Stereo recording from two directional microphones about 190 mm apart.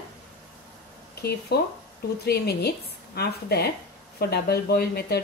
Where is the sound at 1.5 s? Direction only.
60° left (ahead or behind).